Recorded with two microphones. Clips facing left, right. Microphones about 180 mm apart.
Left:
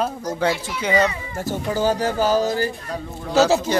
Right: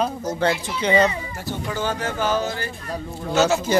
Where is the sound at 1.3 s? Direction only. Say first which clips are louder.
Left 4 dB; 45° left (ahead or behind).